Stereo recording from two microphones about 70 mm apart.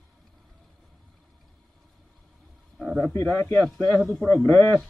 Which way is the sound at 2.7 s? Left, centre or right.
Centre.